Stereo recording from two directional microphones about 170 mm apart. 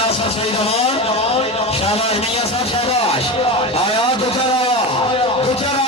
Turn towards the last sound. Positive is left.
turn(degrees=35)  # may be behind; listen again after turning